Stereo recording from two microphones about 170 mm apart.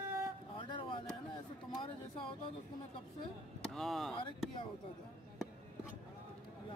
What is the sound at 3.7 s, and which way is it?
Speech, centre (ahead or behind).